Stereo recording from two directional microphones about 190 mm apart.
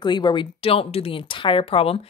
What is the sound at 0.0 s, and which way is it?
Speech, 25° left (ahead or behind).